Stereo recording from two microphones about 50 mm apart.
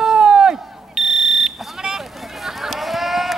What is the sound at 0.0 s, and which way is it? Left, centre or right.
Buzzer, centre.